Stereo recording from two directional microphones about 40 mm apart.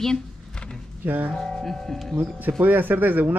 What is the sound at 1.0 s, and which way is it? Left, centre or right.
Speech, right.